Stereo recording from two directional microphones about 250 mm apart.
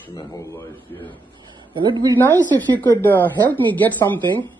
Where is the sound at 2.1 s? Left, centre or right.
Centre.